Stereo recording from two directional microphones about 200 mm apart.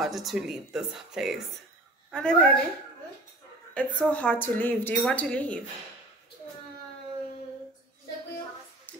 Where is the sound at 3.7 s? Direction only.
5° left (ahead or behind).